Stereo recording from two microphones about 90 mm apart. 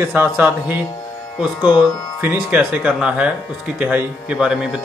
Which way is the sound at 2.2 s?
20° right (ahead or behind).